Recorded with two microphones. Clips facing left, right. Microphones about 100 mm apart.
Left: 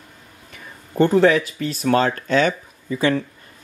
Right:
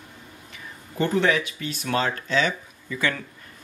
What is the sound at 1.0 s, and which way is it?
Speech, 40° left (ahead or behind).